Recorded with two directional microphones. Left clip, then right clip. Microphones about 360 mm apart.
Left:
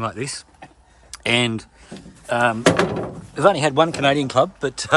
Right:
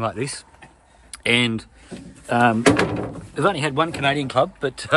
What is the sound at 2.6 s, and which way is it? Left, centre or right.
Speech, left.